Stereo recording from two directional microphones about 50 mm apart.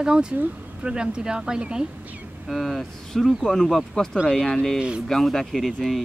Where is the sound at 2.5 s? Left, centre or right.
Centre.